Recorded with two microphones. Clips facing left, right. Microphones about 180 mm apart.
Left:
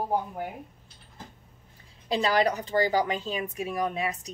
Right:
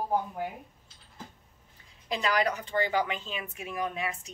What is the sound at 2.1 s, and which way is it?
Speech, 35° left (ahead or behind).